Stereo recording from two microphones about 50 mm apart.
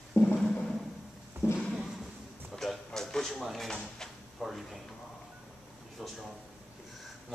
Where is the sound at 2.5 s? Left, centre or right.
Centre.